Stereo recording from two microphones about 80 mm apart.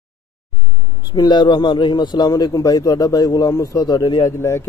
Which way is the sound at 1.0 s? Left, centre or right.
Left.